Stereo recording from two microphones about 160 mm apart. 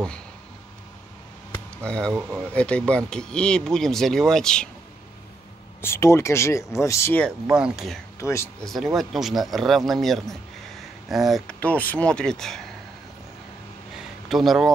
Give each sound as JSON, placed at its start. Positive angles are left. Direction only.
{"t": 1.8, "sound": "speech", "side_deg": 5}
{"t": 5.8, "sound": "speech", "side_deg": 15}
{"t": 7.2, "sound": "speech", "side_deg": -5}
{"t": 8.2, "sound": "speech", "side_deg": 20}
{"t": 8.6, "sound": "speech", "side_deg": 0}
{"t": 14.3, "sound": "speech", "side_deg": 0}